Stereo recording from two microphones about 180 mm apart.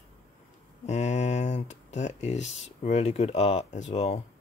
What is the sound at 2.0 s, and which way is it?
Speech, 40° left (ahead or behind).